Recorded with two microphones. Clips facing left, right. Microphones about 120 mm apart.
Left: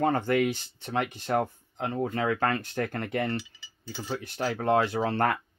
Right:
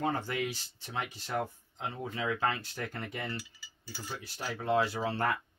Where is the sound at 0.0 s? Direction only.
55° left (ahead or behind).